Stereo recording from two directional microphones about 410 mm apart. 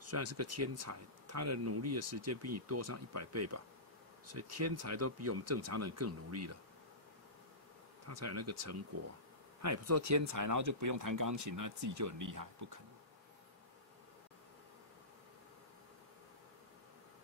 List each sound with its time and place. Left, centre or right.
0.0 s speech: right
8.1 s speech: right